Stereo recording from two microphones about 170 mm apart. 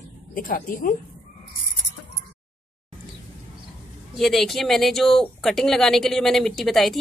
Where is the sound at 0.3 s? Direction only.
55° left (ahead or behind).